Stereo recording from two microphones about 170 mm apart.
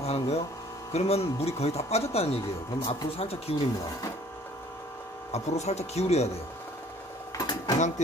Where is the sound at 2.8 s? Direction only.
30° left (ahead or behind).